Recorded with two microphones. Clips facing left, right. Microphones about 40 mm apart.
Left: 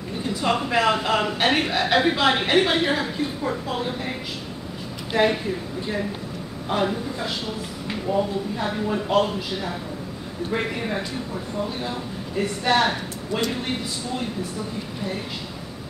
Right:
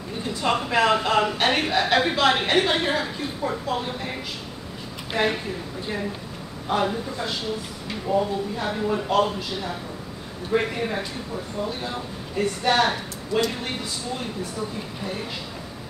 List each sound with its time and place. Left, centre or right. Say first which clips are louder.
0.4 s a man's voice: even; centre
5.1 s a man's voice: left 3 dB; centre
6.7 s a man's voice: even; centre
12.6 s a woman's voice: left 1 dB; centre